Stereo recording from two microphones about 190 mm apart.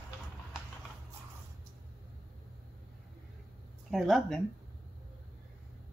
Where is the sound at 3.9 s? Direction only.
Centre (ahead or behind).